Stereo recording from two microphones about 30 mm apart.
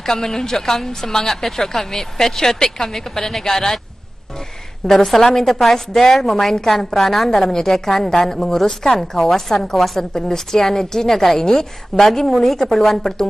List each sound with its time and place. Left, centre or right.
0.0 s a woman's voice: centre
4.8 s a woman's voice: centre
7.2 s a woman's voice: centre